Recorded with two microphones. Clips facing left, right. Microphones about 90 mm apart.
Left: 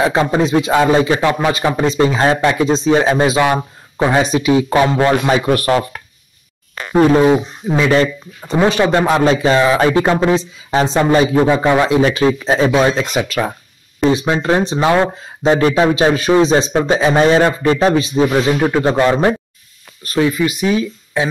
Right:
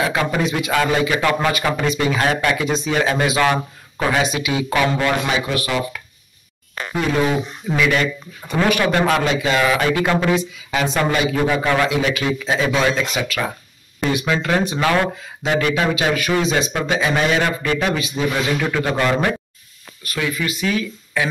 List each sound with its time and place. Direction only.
0.0 s speech: 30° left (ahead or behind)
4.2 s speech: 35° left (ahead or behind)
5.5 s speech: 50° left (ahead or behind)
6.9 s speech: 35° left (ahead or behind)
20.4 s speech: 20° left (ahead or behind)